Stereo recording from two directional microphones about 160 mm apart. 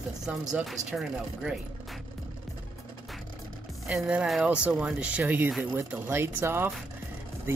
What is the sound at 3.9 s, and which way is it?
Speech, 5° right (ahead or behind).